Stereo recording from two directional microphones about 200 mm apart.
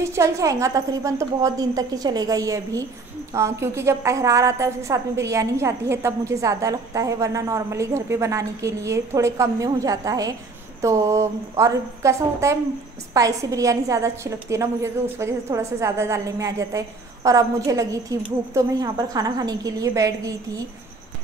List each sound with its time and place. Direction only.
0.0 s a woman's voice: 15° right (ahead or behind)